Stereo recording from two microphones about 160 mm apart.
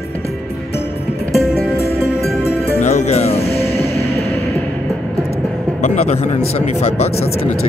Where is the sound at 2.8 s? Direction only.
45° left (ahead or behind).